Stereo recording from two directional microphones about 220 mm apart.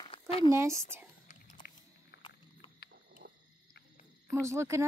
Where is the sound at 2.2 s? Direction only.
20° left (ahead or behind).